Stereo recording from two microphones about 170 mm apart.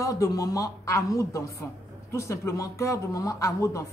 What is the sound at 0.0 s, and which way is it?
Speech, 20° left (ahead or behind).